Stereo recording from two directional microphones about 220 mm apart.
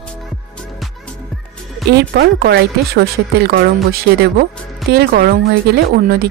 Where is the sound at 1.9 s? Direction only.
45° right (ahead or behind).